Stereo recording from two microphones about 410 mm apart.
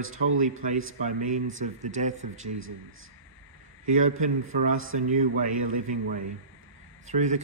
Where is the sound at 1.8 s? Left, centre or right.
Centre.